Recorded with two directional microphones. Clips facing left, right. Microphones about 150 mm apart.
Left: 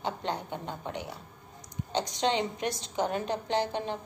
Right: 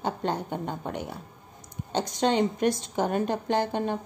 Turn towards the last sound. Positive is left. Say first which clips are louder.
# right 4 dB
turn(degrees=-50)  # may be behind; listen again after turning